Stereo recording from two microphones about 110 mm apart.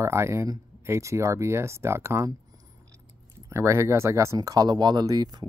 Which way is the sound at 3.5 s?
25° right (ahead or behind).